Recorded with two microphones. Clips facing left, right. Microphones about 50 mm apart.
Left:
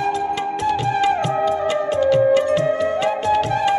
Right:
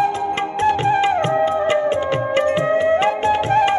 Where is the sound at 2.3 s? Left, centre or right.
Right.